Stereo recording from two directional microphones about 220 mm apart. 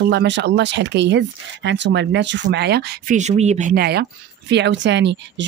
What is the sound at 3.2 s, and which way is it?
Speech, 30° right (ahead or behind).